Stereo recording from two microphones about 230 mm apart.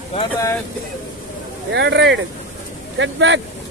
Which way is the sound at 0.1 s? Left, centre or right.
Left.